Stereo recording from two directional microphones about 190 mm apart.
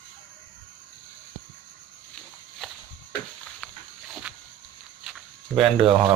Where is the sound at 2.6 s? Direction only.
Centre (ahead or behind).